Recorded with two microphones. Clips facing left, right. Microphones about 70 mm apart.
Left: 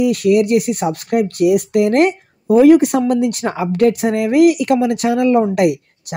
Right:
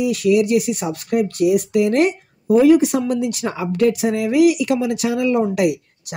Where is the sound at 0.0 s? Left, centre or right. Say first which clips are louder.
Left 3 dB; left.